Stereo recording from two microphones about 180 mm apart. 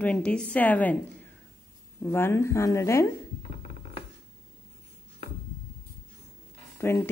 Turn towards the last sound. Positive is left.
turn(degrees=15)  # may be behind; listen again after turning